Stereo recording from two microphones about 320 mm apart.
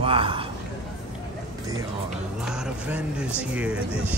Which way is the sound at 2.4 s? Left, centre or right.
Centre.